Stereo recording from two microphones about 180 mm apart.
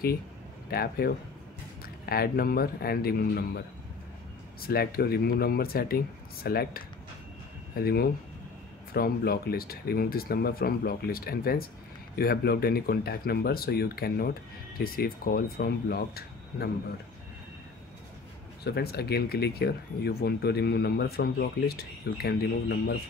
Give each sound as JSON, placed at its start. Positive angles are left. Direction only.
{"t": 0.7, "sound": "speech", "side_deg": 60}
{"t": 18.6, "sound": "speech", "side_deg": 60}